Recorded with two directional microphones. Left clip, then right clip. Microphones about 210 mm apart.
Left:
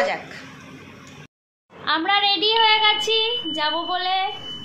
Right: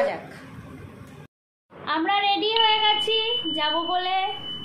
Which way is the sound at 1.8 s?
10° left (ahead or behind).